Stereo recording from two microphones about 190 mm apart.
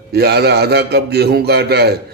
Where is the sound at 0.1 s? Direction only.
55° right (ahead or behind).